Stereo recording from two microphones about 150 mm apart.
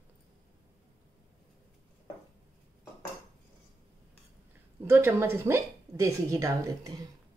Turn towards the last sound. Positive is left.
turn(degrees=-20)  # may be behind; listen again after turning